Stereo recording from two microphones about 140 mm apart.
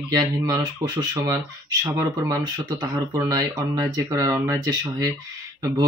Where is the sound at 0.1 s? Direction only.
30° right (ahead or behind).